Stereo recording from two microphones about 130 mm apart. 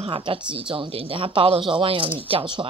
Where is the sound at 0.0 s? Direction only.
40° right (ahead or behind).